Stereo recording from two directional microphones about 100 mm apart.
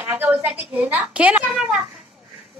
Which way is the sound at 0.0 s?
20° right (ahead or behind).